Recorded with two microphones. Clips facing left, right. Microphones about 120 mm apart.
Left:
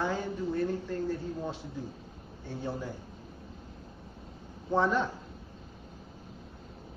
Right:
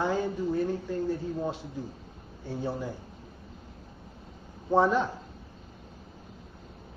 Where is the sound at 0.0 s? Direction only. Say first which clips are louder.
Right 4 dB; 10° right (ahead or behind).